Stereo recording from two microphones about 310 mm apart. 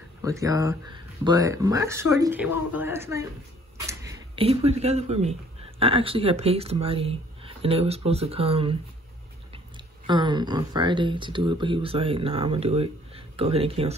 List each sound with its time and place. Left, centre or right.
0.2 s speech: centre
10.0 s speech: centre